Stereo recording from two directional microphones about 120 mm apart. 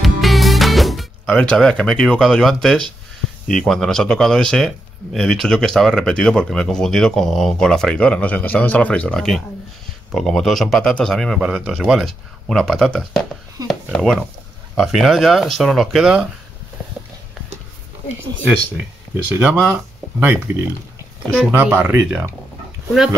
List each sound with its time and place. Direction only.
0.0 s music: centre (ahead or behind)
3.4 s speech: 5° left (ahead or behind)
13.6 s speech: 30° right (ahead or behind)
13.9 s speech: 5° left (ahead or behind)
19.3 s speech: 15° right (ahead or behind)